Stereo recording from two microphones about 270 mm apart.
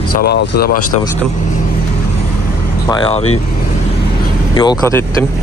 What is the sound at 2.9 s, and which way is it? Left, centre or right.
Speech, centre.